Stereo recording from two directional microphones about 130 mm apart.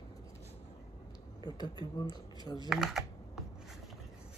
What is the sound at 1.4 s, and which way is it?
Speech, 30° left (ahead or behind).